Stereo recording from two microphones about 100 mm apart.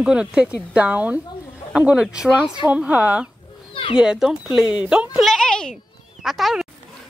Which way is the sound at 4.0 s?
5° right (ahead or behind).